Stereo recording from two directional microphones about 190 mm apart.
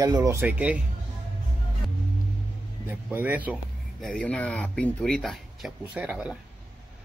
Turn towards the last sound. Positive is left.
turn(degrees=-5)  # may be behind; listen again after turning